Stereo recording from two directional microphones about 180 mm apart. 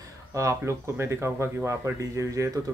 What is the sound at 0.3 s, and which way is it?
Speech, 15° right (ahead or behind).